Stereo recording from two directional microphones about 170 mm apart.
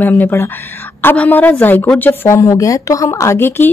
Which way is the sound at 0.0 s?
10° left (ahead or behind).